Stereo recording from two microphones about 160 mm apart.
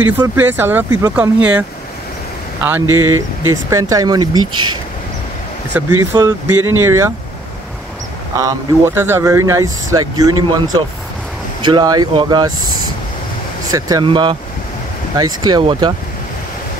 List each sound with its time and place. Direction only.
0.4 s speech: 15° right (ahead or behind)
5.7 s speech: 10° right (ahead or behind)
8.4 s speech: 20° right (ahead or behind)
11.6 s speech: 25° right (ahead or behind)
13.7 s speech: 20° right (ahead or behind)